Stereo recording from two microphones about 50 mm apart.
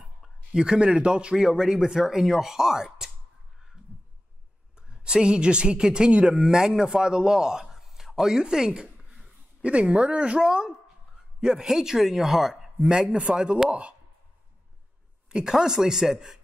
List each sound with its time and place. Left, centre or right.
0.5 s a man's voice: centre
4.7 s a man's voice: centre
12.8 s a man's voice: centre
15.2 s a man's voice: centre